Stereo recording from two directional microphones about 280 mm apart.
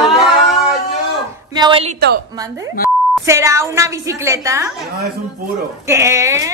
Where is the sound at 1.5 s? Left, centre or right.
Centre.